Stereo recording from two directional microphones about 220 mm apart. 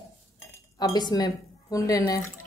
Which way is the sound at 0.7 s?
20° left (ahead or behind).